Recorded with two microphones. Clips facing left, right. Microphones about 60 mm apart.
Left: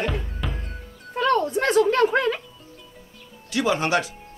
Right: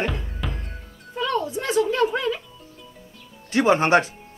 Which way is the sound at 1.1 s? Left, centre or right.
Left.